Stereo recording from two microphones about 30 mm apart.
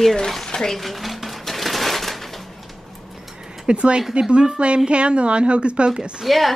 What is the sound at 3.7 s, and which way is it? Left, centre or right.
Speech, right.